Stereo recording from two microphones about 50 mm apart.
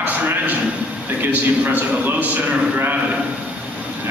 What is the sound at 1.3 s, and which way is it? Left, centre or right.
A man's voice, right.